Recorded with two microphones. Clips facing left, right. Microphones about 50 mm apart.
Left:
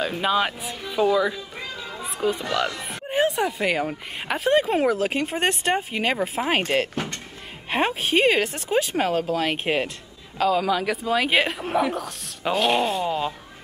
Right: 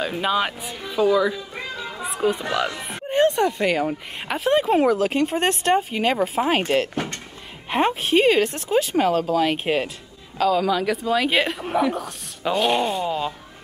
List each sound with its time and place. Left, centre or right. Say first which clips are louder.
0.0 s speech: even; centre
3.1 s speech: right 4 dB; centre
7.7 s speech: right 3 dB; centre